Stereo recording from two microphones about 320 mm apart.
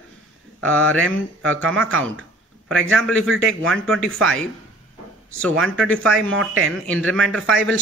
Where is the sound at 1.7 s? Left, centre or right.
Right.